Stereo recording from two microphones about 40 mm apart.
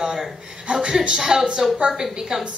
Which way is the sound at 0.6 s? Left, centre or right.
Right.